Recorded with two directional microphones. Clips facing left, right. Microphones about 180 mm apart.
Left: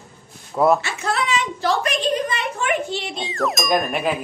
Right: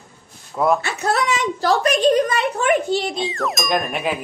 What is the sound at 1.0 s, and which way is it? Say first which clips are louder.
A woman's voice: right 3 dB; 40° right (ahead or behind).